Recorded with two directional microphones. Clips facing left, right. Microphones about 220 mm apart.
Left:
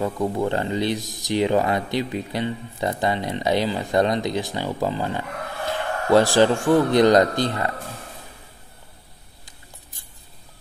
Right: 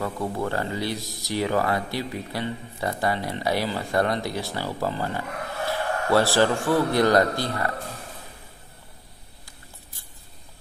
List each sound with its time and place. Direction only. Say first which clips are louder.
0.0 s speech: left 5 dB; 20° left (ahead or behind)